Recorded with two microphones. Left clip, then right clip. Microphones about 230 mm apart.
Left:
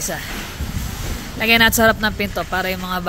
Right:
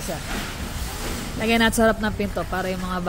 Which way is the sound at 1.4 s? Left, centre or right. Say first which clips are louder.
Left 6 dB; centre.